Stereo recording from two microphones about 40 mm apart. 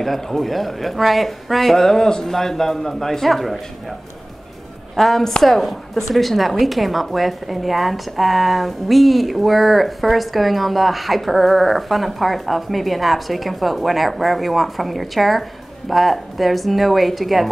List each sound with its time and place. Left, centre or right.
0.0 s speech: centre
4.9 s speech: centre